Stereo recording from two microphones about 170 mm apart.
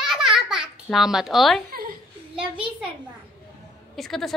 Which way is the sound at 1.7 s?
60° right (ahead or behind).